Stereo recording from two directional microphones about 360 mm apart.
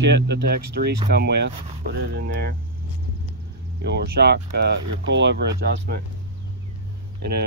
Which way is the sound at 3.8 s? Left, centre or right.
Right.